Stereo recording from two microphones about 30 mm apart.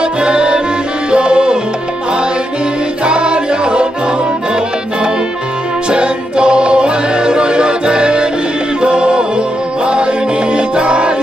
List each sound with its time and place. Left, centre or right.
0.0 s music: right
3.1 s music: right
5.9 s music: right
10.5 s music: right